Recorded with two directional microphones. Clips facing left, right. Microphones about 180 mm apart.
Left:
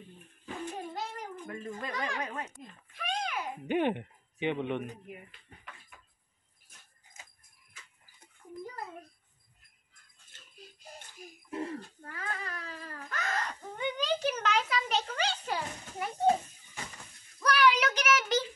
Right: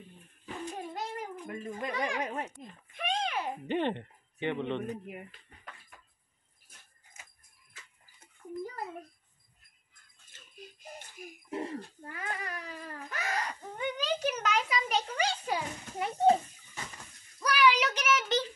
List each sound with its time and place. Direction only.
0.8 s a sound: 10° right (ahead or behind); by 3.4 s 25° right (ahead or behind)
3.6 s speech: 10° left (ahead or behind)
11.5 s crying: 15° right (ahead or behind)
17.4 s child singing: 5° right (ahead or behind)